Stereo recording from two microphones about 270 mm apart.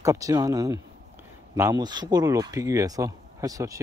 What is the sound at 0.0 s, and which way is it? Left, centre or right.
Speech, centre.